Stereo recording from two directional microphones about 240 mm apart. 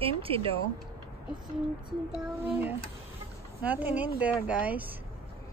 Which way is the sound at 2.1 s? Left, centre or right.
Centre.